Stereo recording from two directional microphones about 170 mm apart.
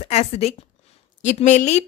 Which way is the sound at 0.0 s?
40° left (ahead or behind).